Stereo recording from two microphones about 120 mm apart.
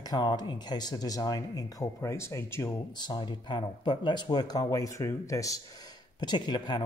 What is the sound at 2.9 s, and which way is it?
Speech, 40° left (ahead or behind).